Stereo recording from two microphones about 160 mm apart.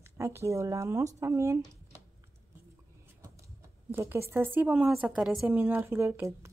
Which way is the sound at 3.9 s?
15° right (ahead or behind).